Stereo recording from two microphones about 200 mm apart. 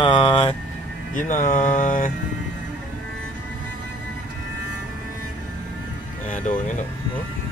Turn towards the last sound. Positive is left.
turn(degrees=40)  # may be behind; listen again after turning